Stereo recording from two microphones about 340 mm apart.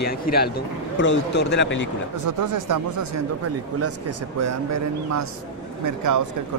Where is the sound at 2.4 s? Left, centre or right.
Right.